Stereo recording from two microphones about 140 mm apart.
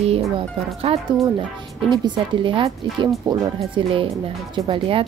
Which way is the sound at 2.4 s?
35° right (ahead or behind).